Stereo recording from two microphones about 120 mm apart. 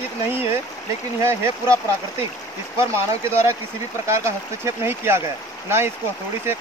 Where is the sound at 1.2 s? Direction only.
25° right (ahead or behind).